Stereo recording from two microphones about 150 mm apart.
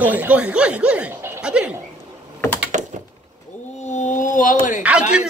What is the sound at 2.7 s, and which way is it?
Door, 55° right (ahead or behind).